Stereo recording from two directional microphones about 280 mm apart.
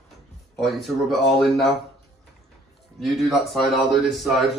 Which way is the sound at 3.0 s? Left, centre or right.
Centre.